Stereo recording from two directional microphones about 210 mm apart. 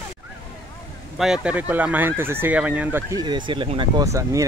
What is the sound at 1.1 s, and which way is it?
Speech, centre (ahead or behind).